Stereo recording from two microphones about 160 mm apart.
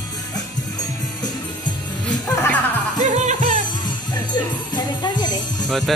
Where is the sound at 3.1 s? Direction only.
50° right (ahead or behind).